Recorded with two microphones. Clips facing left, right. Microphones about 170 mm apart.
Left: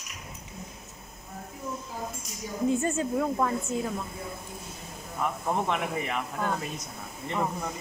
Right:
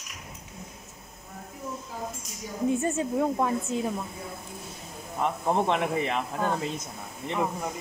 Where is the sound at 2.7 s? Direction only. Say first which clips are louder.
Right 1 dB; 20° right (ahead or behind).